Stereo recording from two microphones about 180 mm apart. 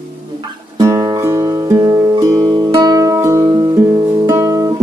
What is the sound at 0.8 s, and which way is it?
Music, 20° right (ahead or behind).